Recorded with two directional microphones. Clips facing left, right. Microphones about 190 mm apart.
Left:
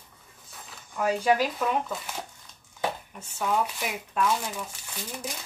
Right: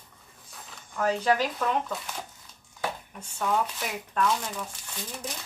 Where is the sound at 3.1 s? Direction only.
5° left (ahead or behind).